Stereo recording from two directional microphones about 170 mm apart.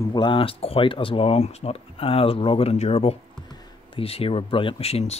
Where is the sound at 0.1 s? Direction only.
30° left (ahead or behind).